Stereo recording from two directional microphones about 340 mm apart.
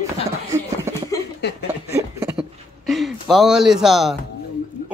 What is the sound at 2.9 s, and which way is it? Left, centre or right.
Speech, centre.